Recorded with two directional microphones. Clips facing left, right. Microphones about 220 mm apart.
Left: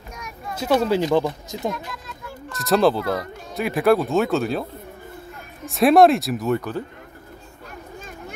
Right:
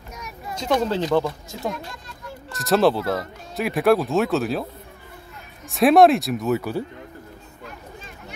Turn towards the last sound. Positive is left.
turn(degrees=-10)  # may be behind; listen again after turning